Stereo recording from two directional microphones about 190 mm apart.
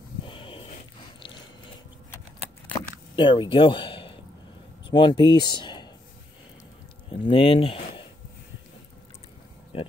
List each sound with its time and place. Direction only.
0.2 s a sound: 25° left (ahead or behind)
3.2 s speech: 25° left (ahead or behind)
7.1 s speech: 30° left (ahead or behind)
9.7 s speech: 30° left (ahead or behind)